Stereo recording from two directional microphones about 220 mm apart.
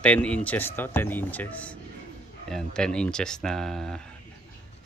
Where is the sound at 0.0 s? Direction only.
5° left (ahead or behind).